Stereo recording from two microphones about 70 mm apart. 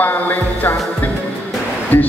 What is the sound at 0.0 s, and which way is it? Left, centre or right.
Music, left.